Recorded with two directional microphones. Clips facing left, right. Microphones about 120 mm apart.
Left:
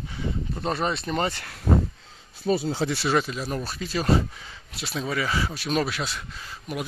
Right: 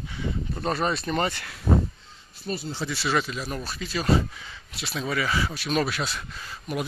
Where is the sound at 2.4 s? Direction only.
90° left.